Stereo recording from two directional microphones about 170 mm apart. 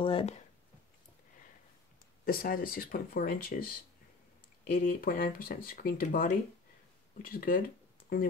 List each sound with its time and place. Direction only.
0.0 s speech: 35° left (ahead or behind)
2.2 s speech: 55° left (ahead or behind)